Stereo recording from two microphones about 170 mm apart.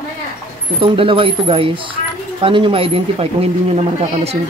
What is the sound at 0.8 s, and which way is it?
Speech, 30° right (ahead or behind).